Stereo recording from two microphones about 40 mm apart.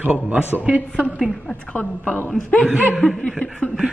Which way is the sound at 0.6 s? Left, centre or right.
Right.